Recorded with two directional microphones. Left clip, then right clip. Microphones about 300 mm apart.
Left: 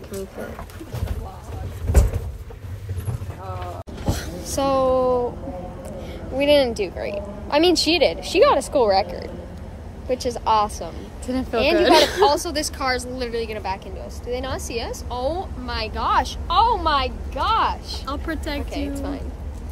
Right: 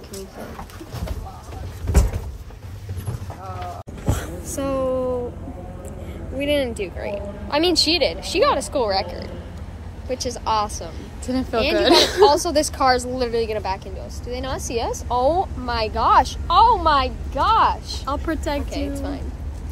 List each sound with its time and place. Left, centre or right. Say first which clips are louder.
4.6 s speech: left 4 dB; centre
6.3 s a woman's voice: left 5 dB; centre
11.2 s a woman's voice: left 1 dB; centre
12.4 s a woman's voice: right 6 dB; centre
18.7 s a woman's voice: right 1 dB; centre